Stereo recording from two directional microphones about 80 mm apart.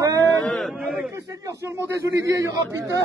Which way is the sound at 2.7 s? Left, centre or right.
Right.